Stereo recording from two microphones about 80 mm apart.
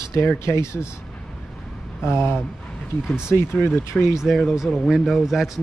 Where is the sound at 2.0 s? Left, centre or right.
Left.